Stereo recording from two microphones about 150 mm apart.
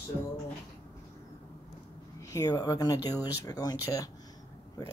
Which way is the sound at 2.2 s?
20° left (ahead or behind).